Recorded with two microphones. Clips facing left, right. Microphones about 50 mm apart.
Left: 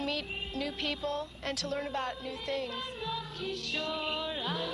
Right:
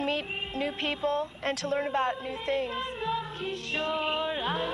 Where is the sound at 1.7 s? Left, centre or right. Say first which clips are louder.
Right 7 dB; right.